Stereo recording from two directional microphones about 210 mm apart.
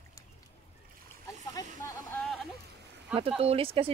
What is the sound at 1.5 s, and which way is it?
Speech, 15° left (ahead or behind).